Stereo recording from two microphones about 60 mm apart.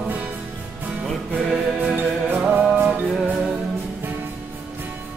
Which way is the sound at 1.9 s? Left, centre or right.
Right.